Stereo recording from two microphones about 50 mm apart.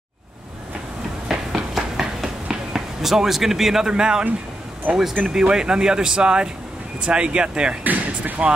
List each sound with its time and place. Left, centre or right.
1.3 s a sound: centre
3.9 s speech: centre
7.8 s speech: right